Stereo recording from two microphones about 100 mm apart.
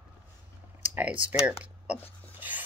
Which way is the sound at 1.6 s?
10° right (ahead or behind).